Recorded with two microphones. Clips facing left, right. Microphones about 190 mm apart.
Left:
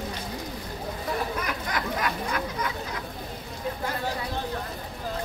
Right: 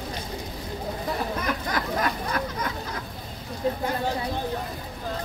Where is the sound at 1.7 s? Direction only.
40° right (ahead or behind).